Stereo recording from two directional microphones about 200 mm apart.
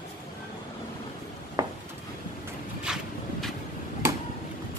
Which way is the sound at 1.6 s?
15° right (ahead or behind).